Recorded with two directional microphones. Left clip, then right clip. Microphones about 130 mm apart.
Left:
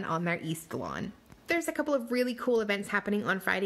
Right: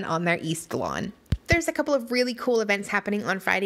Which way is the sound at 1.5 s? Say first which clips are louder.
Right 6 dB; 25° right (ahead or behind).